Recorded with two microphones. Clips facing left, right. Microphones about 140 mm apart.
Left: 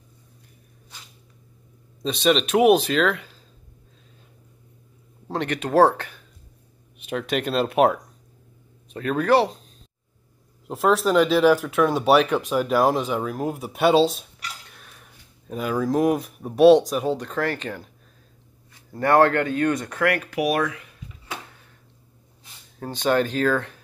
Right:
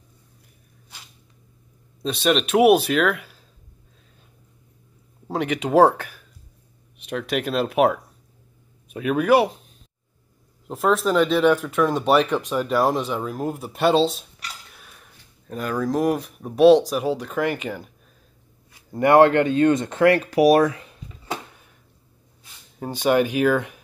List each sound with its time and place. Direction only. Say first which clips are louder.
2.0 s speech: even; centre (ahead or behind)
5.3 s speech: right 2 dB; 10° right (ahead or behind)
10.7 s speech: left 1 dB; centre (ahead or behind); by 21.4 s 30° right (ahead or behind)
22.8 s speech: right 2 dB; 10° right (ahead or behind)